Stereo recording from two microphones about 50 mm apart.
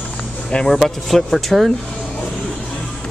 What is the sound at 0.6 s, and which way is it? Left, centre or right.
Speech, centre.